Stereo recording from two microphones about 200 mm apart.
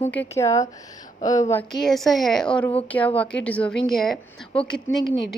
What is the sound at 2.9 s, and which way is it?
A woman's voice, 10° left (ahead or behind).